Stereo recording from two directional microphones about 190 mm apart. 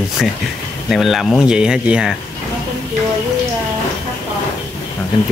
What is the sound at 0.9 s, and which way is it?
Speech, centre (ahead or behind).